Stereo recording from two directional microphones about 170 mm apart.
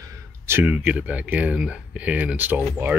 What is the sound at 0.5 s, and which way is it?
Speech, 10° right (ahead or behind).